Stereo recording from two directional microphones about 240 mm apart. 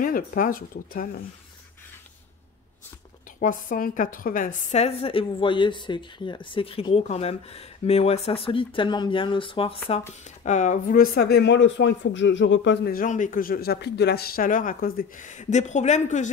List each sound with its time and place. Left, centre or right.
0.0 s a woman's voice: left
3.3 s a woman's voice: left